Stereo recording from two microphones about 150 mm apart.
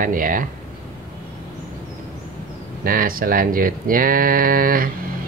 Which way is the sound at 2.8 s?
70° right (ahead or behind).